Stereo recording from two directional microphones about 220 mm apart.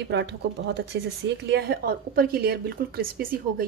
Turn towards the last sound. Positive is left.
turn(degrees=-40)  # may be behind; listen again after turning